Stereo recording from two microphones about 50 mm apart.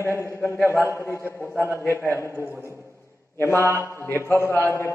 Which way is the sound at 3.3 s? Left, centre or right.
Left.